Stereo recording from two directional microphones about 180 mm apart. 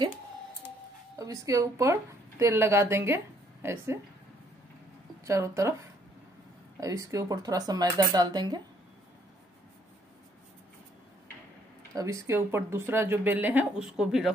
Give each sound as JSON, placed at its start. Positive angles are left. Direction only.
{"t": 1.1, "sound": "speech", "side_deg": -20}
{"t": 5.2, "sound": "speech", "side_deg": -15}
{"t": 6.8, "sound": "speech", "side_deg": -20}
{"t": 11.9, "sound": "speech", "side_deg": -20}